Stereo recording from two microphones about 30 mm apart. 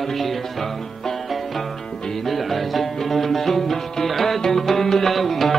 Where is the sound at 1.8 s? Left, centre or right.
Left.